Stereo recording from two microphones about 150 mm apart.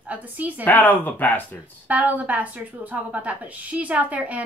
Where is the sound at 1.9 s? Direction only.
10° right (ahead or behind).